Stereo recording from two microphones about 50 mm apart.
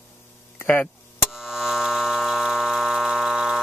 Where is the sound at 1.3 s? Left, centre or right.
Centre.